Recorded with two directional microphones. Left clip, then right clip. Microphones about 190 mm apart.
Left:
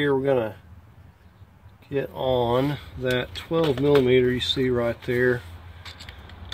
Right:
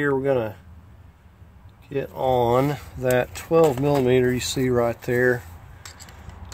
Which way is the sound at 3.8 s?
50° right (ahead or behind).